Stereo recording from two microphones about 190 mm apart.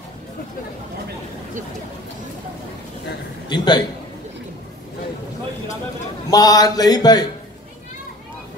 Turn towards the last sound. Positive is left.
turn(degrees=20)  # may be behind; listen again after turning